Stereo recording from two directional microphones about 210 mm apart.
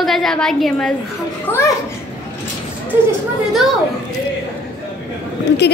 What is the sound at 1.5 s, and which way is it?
Speech, 15° left (ahead or behind).